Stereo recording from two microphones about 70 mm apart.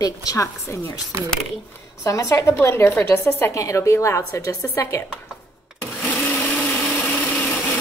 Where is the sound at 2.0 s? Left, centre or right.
Left.